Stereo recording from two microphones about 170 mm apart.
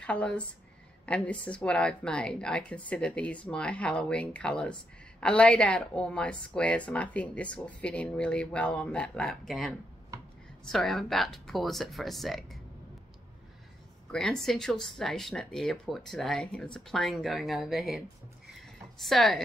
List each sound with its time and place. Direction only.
0.0 s a woman's voice: 5° left (ahead or behind)
10.1 s a sound: 20° right (ahead or behind)
10.6 s speech: centre (ahead or behind)
14.1 s speech: 5° left (ahead or behind)